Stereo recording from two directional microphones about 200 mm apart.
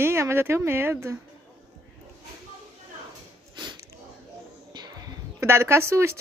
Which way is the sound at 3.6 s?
20° right (ahead or behind).